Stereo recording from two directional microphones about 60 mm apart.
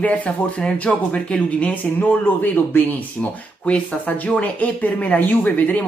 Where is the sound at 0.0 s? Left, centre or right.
Left.